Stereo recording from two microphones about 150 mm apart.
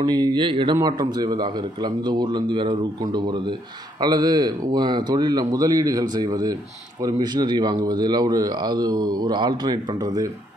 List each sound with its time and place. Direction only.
0.0 s a man's voice: 30° right (ahead or behind)